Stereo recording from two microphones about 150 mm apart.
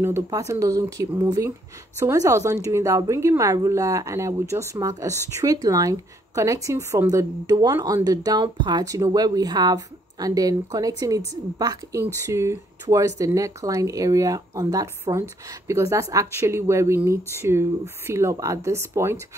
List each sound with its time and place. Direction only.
0.0 s speech: 20° right (ahead or behind)